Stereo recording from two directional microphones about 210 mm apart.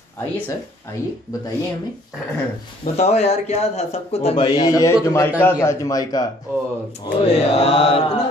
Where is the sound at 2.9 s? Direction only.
30° left (ahead or behind).